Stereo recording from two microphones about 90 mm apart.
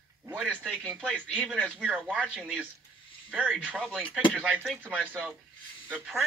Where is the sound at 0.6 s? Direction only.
10° left (ahead or behind).